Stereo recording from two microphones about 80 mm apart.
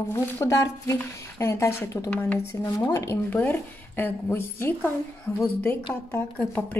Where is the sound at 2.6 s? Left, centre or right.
Left.